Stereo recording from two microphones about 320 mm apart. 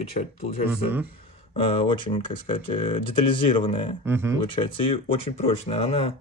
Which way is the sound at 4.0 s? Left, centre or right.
Centre.